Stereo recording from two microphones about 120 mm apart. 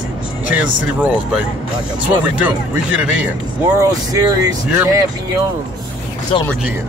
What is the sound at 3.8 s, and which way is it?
Speech, 30° right (ahead or behind).